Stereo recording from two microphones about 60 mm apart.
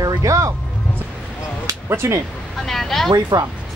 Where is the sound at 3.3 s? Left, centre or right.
Right.